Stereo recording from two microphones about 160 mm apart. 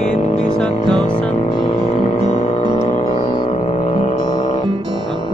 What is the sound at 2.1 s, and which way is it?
Music, 45° left (ahead or behind).